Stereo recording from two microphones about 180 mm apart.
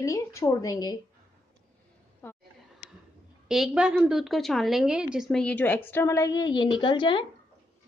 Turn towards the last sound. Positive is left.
turn(degrees=25)  # may be behind; listen again after turning